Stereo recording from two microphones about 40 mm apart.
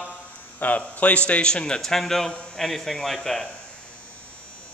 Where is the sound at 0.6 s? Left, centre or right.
Left.